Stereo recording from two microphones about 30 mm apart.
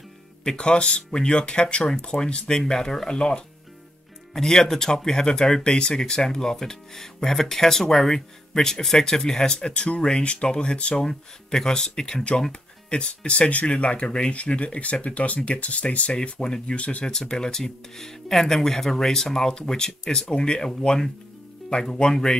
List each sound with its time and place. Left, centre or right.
0.4 s speech: left
2.4 s speech: left
9.7 s speech: left
11.1 s speech: left
12.9 s speech: left
14.3 s speech: left
17.1 s speech: centre
19.4 s speech: left
21.8 s speech: centre